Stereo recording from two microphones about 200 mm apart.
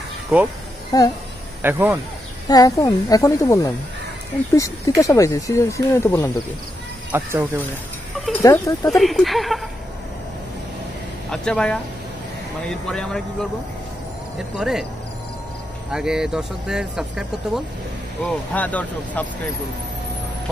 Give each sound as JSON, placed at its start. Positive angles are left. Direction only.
{"t": 0.3, "sound": "speech", "side_deg": 0}
{"t": 0.9, "sound": "speech", "side_deg": 20}
{"t": 1.6, "sound": "speech", "side_deg": -10}
{"t": 2.4, "sound": "speech", "side_deg": 20}
{"t": 7.1, "sound": "speech", "side_deg": -10}
{"t": 8.3, "sound": "speech", "side_deg": 15}
{"t": 8.9, "sound": "speech", "side_deg": 0}
{"t": 11.2, "sound": "speech", "side_deg": 5}
{"t": 14.6, "sound": "speech", "side_deg": 0}
{"t": 15.9, "sound": "speech", "side_deg": -5}
{"t": 18.2, "sound": "speech", "side_deg": 5}